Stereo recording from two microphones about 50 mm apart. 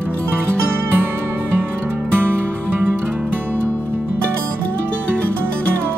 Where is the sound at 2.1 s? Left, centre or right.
Right.